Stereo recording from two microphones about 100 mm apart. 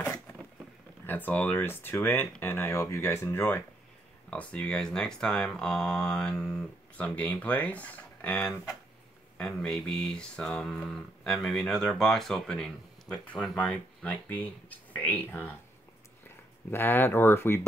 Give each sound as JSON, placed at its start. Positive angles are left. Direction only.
{"t": 1.0, "sound": "speech", "side_deg": 20}
{"t": 16.7, "sound": "speech", "side_deg": 20}